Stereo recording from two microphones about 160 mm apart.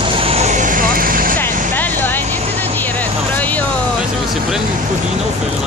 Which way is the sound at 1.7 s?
10° left (ahead or behind).